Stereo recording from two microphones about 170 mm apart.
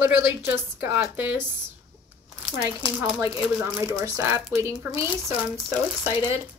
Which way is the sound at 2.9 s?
5° right (ahead or behind).